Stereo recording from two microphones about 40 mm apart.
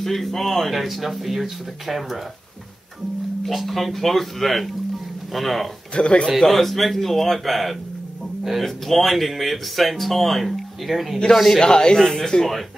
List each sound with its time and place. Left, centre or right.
0.0 s speech: centre
3.4 s speech: centre
5.9 s speech: left
6.4 s speech: centre
11.6 s speech: centre